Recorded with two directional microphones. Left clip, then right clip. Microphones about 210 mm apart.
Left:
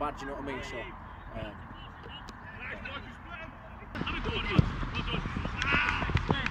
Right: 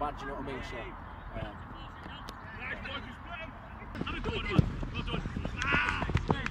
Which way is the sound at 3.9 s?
5° right (ahead or behind).